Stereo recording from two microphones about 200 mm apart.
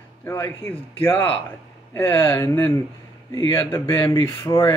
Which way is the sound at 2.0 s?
10° left (ahead or behind).